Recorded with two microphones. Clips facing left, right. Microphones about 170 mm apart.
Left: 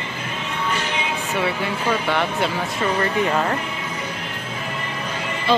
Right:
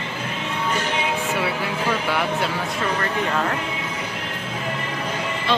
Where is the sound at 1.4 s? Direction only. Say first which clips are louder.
Left 1 dB; centre (ahead or behind).